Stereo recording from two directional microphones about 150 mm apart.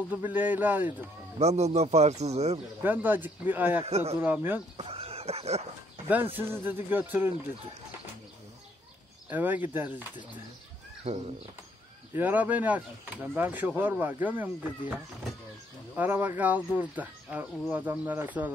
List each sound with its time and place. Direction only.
0.1 s speech: 10° right (ahead or behind)
1.4 s speech: 45° right (ahead or behind)
2.8 s speech: 10° right (ahead or behind)
3.8 s speech: 45° right (ahead or behind)
4.2 s speech: 15° right (ahead or behind)
4.7 s a sound: 40° right (ahead or behind)
6.3 s speech: 15° right (ahead or behind)
9.3 s speech: 10° right (ahead or behind)
11.1 s speech: 45° right (ahead or behind)
12.1 s speech: 15° right (ahead or behind)
16.0 s speech: 10° right (ahead or behind)